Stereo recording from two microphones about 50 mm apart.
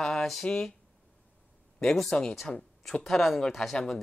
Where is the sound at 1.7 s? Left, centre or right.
Centre.